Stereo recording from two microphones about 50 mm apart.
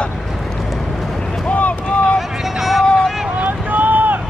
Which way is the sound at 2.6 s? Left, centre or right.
Centre.